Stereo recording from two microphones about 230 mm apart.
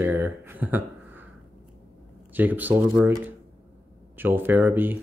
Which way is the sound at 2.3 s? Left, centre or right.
Centre.